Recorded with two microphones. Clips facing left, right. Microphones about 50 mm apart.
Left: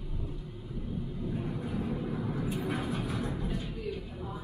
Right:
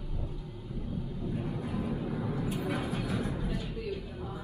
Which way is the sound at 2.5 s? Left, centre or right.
Right.